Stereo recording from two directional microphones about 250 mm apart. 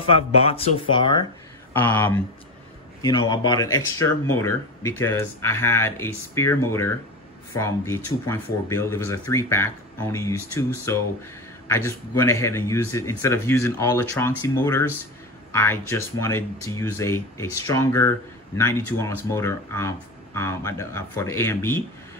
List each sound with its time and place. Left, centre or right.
0.1 s speech: left
1.7 s speech: centre
11.6 s a sound: centre
12.2 s speech: centre